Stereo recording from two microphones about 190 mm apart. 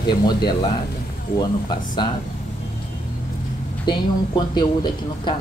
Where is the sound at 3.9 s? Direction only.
25° left (ahead or behind).